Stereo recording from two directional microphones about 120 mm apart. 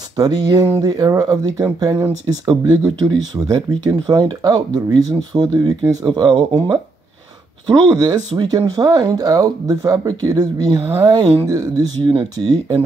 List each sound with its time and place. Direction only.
0.1 s speech: 35° right (ahead or behind)
7.9 s speech: 35° right (ahead or behind)